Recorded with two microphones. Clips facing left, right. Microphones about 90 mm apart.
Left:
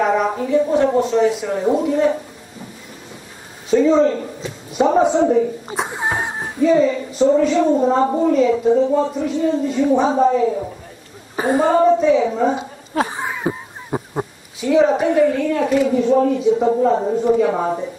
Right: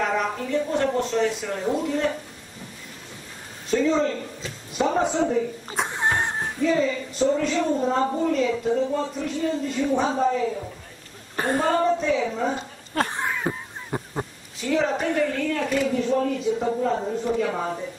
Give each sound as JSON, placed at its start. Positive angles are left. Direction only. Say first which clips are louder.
{"t": 0.0, "sound": "a sound", "louder": "left 7 dB", "side_deg": 5}
{"t": 0.4, "sound": "a man's voice", "louder": "left 8 dB", "side_deg": 10}
{"t": 3.7, "sound": "a man's voice", "louder": "left 8 dB", "side_deg": 5}
{"t": 5.8, "sound": "a sound", "louder": "left 1 dB", "side_deg": 5}
{"t": 8.0, "sound": "a man's voice", "louder": "left 6 dB", "side_deg": 15}
{"t": 8.3, "sound": "a man's voice", "louder": "left 8 dB", "side_deg": 5}
{"t": 16.4, "sound": "a man's voice", "louder": "left 8 dB", "side_deg": 15}